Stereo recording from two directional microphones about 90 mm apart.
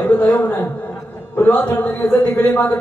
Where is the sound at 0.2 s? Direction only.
15° left (ahead or behind).